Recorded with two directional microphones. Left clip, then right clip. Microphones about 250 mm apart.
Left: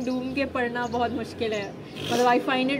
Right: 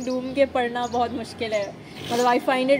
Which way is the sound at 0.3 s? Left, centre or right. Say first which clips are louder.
Right 7 dB; centre.